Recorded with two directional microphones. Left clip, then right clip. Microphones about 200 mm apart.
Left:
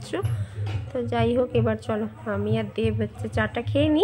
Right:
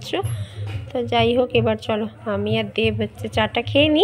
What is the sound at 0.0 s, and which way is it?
A woman's voice, centre (ahead or behind).